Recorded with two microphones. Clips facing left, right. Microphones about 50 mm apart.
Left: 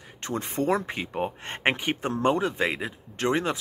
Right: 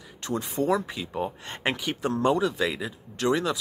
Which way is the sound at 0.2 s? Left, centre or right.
Left.